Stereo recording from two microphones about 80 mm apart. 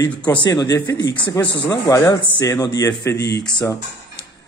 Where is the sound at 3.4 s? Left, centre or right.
Centre.